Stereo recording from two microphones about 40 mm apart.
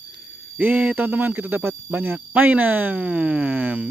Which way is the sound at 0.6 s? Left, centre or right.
Right.